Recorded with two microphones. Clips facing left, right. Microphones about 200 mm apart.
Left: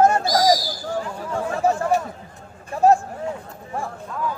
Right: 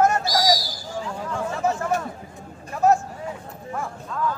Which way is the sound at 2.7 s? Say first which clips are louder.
Left 3 dB; 30° left (ahead or behind).